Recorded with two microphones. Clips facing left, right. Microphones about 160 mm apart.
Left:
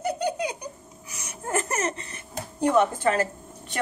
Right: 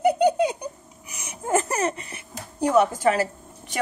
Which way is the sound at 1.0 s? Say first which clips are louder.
Right 3 dB; 15° right (ahead or behind).